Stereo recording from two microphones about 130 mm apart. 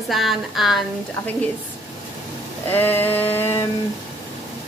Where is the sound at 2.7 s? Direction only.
15° left (ahead or behind).